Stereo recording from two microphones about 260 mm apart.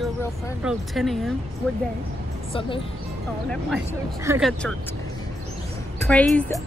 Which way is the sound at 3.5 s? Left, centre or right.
Centre.